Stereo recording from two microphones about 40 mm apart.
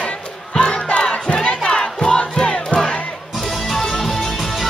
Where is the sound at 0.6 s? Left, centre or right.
Left.